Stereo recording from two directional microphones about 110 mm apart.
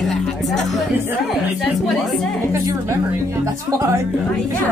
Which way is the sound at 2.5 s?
35° right (ahead or behind).